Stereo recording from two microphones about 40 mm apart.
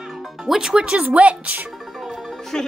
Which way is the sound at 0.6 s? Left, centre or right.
Right.